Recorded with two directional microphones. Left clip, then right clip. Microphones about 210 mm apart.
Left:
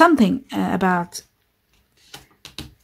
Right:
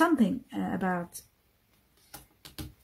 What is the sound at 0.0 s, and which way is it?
A woman's voice, 30° left (ahead or behind).